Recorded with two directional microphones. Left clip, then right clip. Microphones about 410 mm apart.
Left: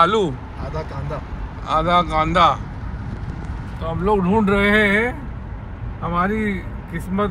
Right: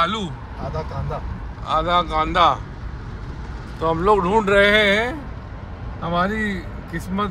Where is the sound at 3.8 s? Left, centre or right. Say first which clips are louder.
Right 3 dB; centre.